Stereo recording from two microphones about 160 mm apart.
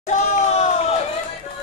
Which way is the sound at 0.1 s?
50° left (ahead or behind).